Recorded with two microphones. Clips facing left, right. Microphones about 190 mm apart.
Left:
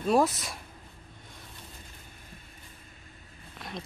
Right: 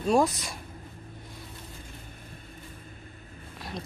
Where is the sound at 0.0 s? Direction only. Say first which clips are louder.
Right 1 dB; centre (ahead or behind).